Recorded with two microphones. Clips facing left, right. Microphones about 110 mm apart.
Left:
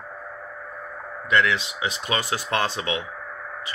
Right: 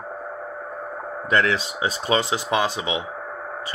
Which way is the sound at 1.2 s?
35° right (ahead or behind).